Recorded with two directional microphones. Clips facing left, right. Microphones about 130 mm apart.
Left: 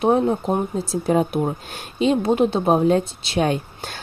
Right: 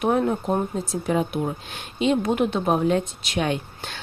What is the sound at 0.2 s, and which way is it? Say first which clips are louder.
Speech: left 2 dB; 20° left (ahead or behind).